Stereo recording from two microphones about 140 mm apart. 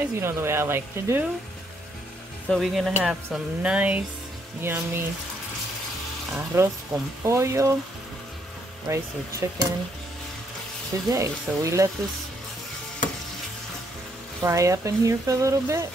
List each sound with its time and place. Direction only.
0.0 s speech: 15° right (ahead or behind)
2.5 s speech: centre (ahead or behind); by 5.0 s 15° right (ahead or behind)
6.3 s speech: 20° right (ahead or behind)
8.8 s speech: 25° right (ahead or behind)
11.1 s speech: 25° right (ahead or behind)
14.4 s speech: 20° right (ahead or behind)